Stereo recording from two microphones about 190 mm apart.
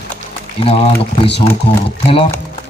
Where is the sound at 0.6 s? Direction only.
30° left (ahead or behind).